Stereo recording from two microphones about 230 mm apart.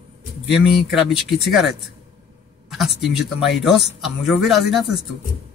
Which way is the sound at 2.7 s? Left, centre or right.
Centre.